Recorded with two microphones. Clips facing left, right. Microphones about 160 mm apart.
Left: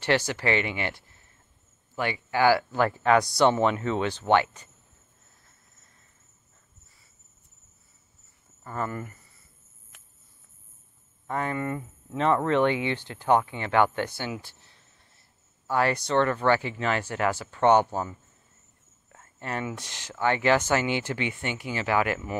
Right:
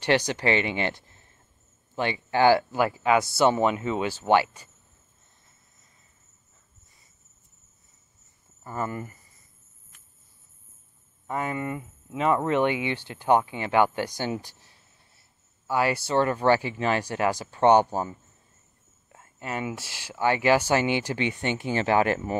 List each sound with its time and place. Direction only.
0.0 s speech: 15° right (ahead or behind)
2.7 s speech: 10° right (ahead or behind)
8.6 s speech: 15° right (ahead or behind)
11.2 s speech: 10° right (ahead or behind)
14.1 s speech: 40° right (ahead or behind)
14.4 s a sound: 15° right (ahead or behind)
15.6 s speech: 5° right (ahead or behind)
19.7 s speech: 5° right (ahead or behind); by 22.3 s 30° right (ahead or behind)